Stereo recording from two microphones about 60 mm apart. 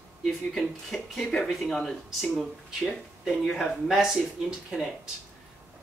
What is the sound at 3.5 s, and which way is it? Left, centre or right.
Speech, centre.